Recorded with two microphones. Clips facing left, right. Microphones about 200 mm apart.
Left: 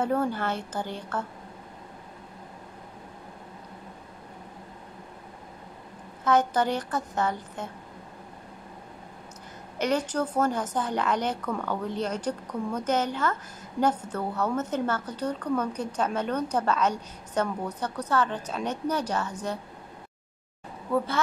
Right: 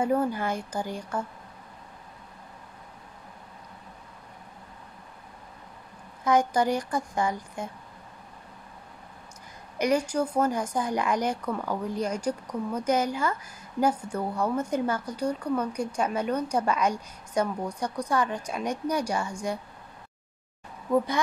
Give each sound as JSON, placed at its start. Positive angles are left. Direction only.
{"t": 0.0, "sound": "a woman's voice", "side_deg": -10}
{"t": 6.2, "sound": "a woman's voice", "side_deg": -10}
{"t": 9.8, "sound": "a woman's voice", "side_deg": -10}
{"t": 20.9, "sound": "a woman's voice", "side_deg": -15}